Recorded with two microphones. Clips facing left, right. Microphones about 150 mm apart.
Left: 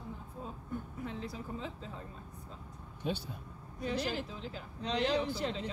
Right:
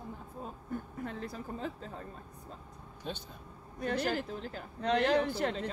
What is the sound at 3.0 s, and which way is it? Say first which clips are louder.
Speech: left 5 dB; 10° left (ahead or behind).